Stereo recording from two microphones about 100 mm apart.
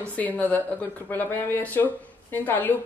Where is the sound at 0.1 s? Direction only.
15° left (ahead or behind).